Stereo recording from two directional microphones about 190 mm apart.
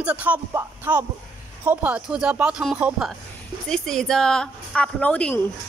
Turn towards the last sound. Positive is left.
turn(degrees=5)  # may be behind; listen again after turning